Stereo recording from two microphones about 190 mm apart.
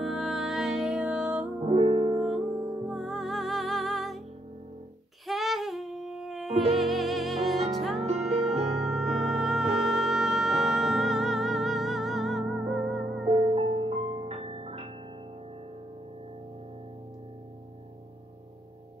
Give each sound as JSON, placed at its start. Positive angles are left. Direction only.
{"t": 0.0, "sound": "music", "side_deg": 0}
{"t": 1.6, "sound": "music", "side_deg": -30}
{"t": 2.1, "sound": "music", "side_deg": -5}
{"t": 5.2, "sound": "babbling", "side_deg": 0}
{"t": 6.7, "sound": "music", "side_deg": 0}
{"t": 8.0, "sound": "music", "side_deg": -35}
{"t": 8.9, "sound": "music", "side_deg": 0}
{"t": 13.3, "sound": "music", "side_deg": -30}